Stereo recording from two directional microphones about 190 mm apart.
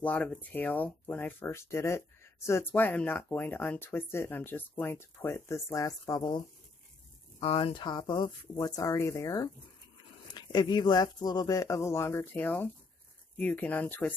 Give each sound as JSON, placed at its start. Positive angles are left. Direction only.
{"t": 0.0, "sound": "speech", "side_deg": 5}